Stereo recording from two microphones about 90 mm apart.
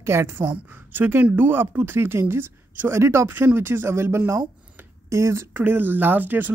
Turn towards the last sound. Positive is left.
turn(degrees=-20)  # may be behind; listen again after turning